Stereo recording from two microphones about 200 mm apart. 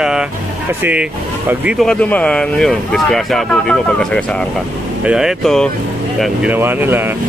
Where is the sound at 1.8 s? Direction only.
5° left (ahead or behind); by 7.1 s 10° right (ahead or behind).